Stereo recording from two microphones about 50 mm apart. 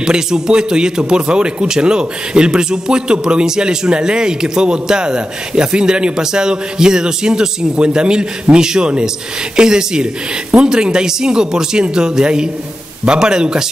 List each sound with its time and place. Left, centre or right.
0.0 s speech: centre